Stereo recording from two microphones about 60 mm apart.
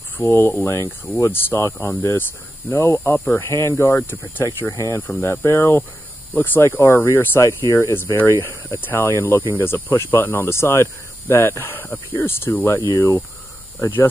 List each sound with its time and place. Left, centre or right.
0.3 s speech: left
3.0 s speech: left
3.5 s speech: left
4.6 s speech: left
5.2 s speech: left
7.4 s speech: left
10.5 s speech: left
12.9 s speech: left
13.7 s speech: left